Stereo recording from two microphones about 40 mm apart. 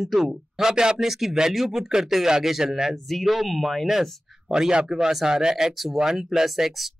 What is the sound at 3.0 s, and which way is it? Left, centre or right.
Speech, centre.